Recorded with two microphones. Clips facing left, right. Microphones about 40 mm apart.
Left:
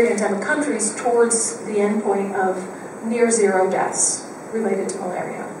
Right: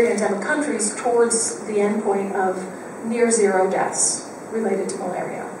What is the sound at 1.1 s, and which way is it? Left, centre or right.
Speech, left.